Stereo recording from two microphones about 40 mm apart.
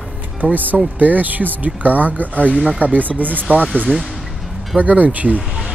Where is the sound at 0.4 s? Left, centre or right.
Right.